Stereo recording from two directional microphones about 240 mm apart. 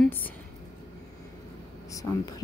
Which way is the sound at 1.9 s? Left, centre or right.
Centre.